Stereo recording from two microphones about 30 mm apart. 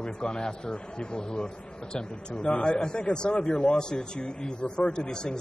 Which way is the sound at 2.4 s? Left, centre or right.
Left.